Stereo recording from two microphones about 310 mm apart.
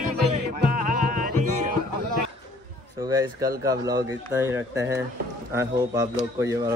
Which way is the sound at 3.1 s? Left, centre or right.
Centre.